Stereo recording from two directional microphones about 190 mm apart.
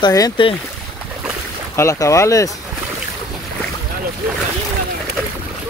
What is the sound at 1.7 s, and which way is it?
Speech, 15° left (ahead or behind).